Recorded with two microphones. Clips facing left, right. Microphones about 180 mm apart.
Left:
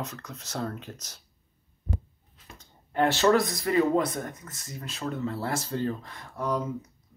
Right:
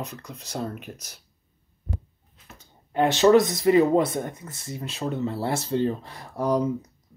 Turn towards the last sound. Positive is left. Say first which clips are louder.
# right 6 dB
turn(degrees=-35)  # may be behind; listen again after turning